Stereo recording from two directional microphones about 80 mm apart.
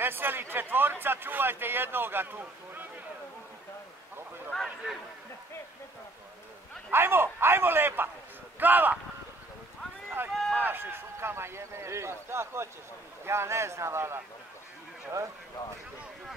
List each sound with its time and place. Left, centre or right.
0.0 s a man's voice: right
4.5 s a sound: centre
6.9 s a man's voice: right
10.3 s run: centre
10.6 s a man's voice: right